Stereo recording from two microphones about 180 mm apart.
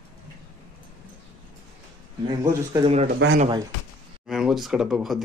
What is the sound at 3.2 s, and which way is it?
Speech, 80° right.